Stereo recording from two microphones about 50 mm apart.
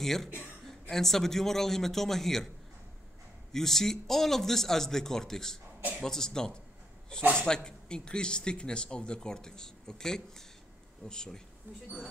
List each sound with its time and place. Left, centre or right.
0.0 s speech: centre
3.5 s speech: centre